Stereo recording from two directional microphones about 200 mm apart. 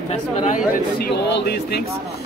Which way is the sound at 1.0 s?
55° left (ahead or behind).